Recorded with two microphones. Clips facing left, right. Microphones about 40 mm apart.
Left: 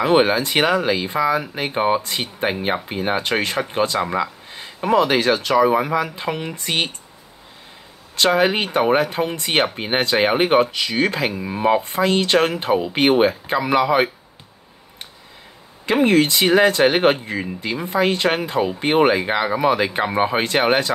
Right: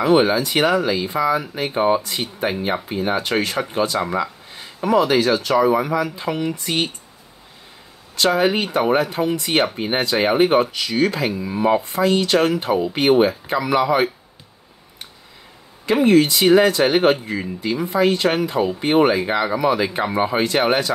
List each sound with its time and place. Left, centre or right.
0.0 s speech: left
4.0 s a sound: left
4.8 s speech: left
8.2 s speech: left
11.8 s speech: left
15.8 s speech: left